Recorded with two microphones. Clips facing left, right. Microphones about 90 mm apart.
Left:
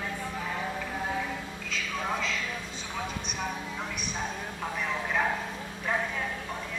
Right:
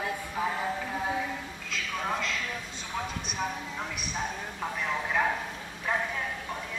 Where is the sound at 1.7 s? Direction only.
Centre (ahead or behind).